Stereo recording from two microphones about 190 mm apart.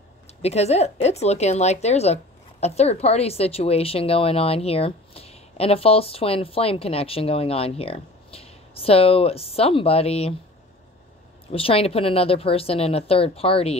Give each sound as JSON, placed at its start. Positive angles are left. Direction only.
{"t": 0.4, "sound": "a woman's voice", "side_deg": 35}
{"t": 11.5, "sound": "a woman's voice", "side_deg": 30}